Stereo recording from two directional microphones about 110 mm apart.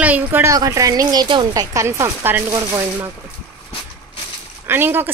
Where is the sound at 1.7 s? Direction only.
30° right (ahead or behind).